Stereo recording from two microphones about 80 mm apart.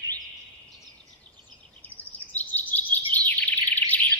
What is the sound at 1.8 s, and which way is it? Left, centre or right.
Bird vocalization, centre.